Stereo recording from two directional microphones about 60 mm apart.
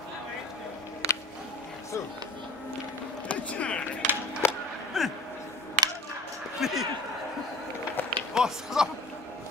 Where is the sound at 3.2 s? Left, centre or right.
Left.